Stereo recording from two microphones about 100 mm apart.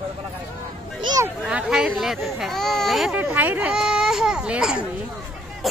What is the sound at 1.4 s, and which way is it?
Speech, 5° right (ahead or behind).